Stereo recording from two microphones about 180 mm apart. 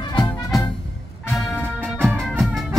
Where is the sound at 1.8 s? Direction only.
10° right (ahead or behind).